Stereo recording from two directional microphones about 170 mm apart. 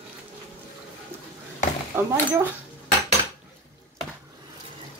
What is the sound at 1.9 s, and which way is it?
Speech, 10° right (ahead or behind).